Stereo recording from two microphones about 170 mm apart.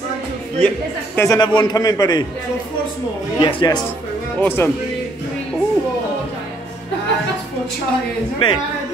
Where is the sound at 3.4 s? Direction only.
25° left (ahead or behind).